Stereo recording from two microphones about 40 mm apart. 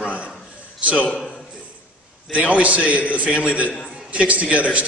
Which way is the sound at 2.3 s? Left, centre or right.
Right.